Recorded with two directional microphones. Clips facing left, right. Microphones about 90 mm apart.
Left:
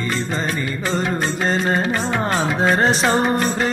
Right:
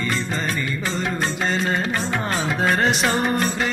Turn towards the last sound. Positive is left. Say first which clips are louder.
# left 3 dB
turn(degrees=35)  # may be behind; listen again after turning